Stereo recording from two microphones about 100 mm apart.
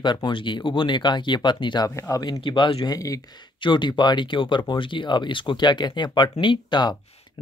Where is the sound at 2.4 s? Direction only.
55° left (ahead or behind).